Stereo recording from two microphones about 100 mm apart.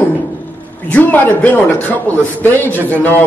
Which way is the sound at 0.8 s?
15° left (ahead or behind).